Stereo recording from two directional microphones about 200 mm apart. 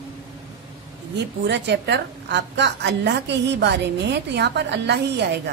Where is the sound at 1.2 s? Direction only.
60° right (ahead or behind).